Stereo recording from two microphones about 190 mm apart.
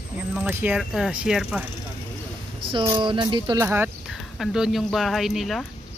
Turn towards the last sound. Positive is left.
turn(degrees=0)  # may be behind; listen again after turning